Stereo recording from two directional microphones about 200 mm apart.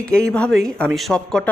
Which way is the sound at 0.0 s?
5° left (ahead or behind).